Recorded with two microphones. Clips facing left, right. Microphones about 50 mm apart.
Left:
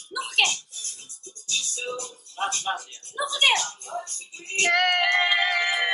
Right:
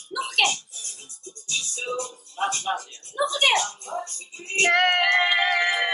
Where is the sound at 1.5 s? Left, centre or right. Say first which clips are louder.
Right 1 dB; right.